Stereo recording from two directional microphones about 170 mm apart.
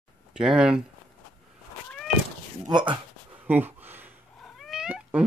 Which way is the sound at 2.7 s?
30° right (ahead or behind).